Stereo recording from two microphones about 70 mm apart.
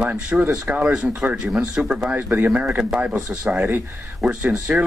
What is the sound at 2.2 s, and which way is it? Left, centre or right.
Speech, right.